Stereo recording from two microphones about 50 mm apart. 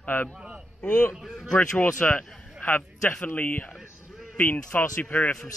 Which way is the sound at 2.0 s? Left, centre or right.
Left.